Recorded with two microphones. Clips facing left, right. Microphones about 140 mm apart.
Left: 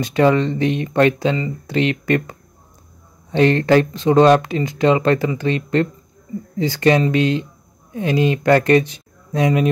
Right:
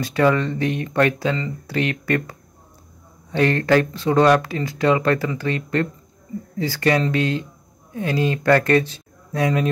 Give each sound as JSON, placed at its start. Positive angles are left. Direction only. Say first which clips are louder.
{"t": 0.0, "sound": "speech", "louder": "left 3 dB", "side_deg": 20}